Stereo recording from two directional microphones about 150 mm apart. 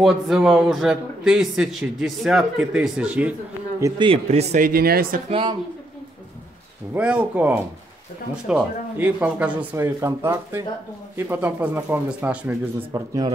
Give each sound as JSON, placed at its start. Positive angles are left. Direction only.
{"t": 0.0, "sound": "a man's voice", "side_deg": -5}
{"t": 4.0, "sound": "speech", "side_deg": -40}
{"t": 5.3, "sound": "speech", "side_deg": -30}
{"t": 6.9, "sound": "speech", "side_deg": -10}
{"t": 12.9, "sound": "speech", "side_deg": -25}